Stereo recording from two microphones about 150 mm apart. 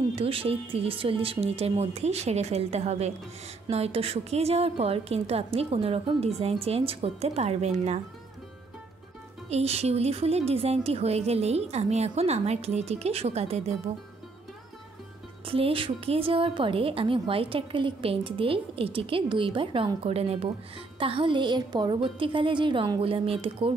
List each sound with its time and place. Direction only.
0.1 s a woman's voice: 40° right (ahead or behind)
9.5 s a woman's voice: 45° right (ahead or behind)
15.4 s a woman's voice: 35° right (ahead or behind)